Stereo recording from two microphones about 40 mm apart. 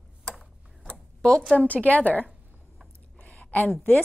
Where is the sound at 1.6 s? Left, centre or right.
Left.